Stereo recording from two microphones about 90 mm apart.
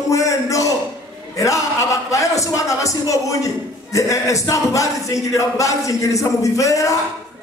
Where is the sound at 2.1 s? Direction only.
35° left (ahead or behind).